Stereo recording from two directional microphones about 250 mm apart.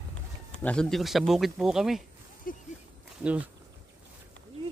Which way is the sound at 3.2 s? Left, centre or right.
Centre.